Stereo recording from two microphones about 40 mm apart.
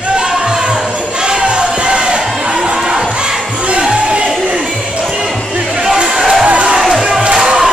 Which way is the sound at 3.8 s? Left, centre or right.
Right.